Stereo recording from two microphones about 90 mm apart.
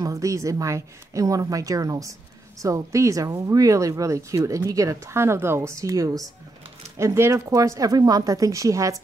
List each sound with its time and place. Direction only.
0.0 s speech: 35° right (ahead or behind)